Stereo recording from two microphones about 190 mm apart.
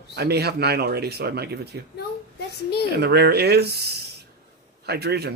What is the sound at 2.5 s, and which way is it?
Speech, 55° left (ahead or behind).